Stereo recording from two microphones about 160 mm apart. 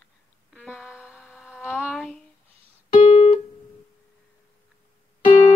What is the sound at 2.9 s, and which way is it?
Music, 35° left (ahead or behind).